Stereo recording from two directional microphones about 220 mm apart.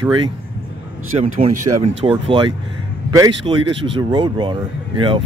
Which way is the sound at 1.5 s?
90° right.